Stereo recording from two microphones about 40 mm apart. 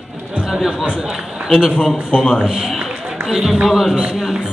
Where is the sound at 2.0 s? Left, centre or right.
Left.